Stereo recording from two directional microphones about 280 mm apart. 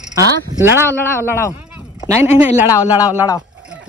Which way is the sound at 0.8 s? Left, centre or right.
Centre.